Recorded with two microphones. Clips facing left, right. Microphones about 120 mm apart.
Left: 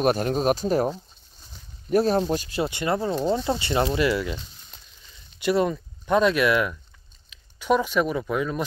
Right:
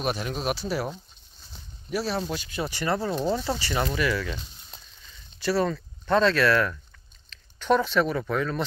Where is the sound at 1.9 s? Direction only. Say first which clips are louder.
Left 8 dB; 50° left (ahead or behind).